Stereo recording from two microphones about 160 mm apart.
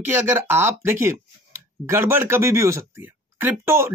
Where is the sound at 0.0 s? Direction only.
15° right (ahead or behind).